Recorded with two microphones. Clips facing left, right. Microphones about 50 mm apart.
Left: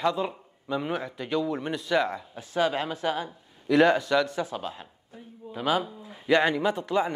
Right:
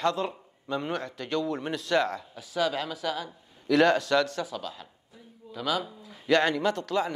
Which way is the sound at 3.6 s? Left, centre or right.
Centre.